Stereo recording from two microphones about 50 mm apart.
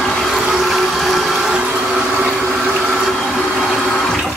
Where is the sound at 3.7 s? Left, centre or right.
Left.